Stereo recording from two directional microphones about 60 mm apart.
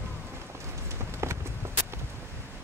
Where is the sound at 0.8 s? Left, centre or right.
Right.